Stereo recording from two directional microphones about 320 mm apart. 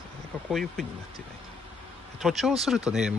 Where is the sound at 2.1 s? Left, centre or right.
Centre.